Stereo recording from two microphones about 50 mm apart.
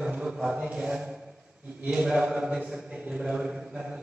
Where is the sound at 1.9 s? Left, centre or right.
Centre.